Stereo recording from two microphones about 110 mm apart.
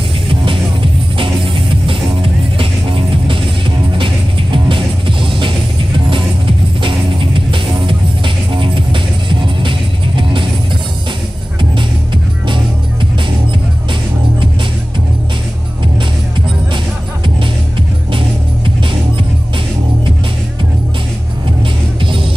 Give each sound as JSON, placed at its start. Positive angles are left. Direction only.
{"t": 2.5, "sound": "music", "side_deg": -50}
{"t": 11.7, "sound": "music", "side_deg": -50}
{"t": 18.1, "sound": "music", "side_deg": -50}